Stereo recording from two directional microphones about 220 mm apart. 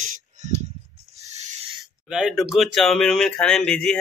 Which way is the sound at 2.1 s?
5° right (ahead or behind).